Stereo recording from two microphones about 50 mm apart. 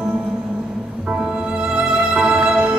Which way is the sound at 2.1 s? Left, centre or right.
Centre.